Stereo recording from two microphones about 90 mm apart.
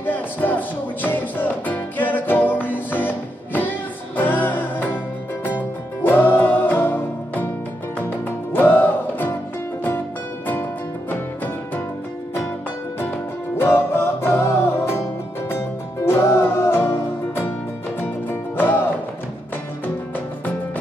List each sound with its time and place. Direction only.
0.0 s music: 20° left (ahead or behind)
6.0 s music: 25° left (ahead or behind)
8.5 s music: 20° left (ahead or behind)
13.6 s music: 25° left (ahead or behind)